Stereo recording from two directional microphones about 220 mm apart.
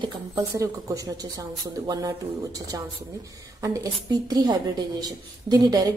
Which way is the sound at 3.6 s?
15° right (ahead or behind).